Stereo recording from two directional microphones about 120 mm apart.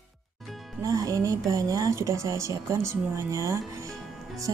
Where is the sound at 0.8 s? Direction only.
25° right (ahead or behind).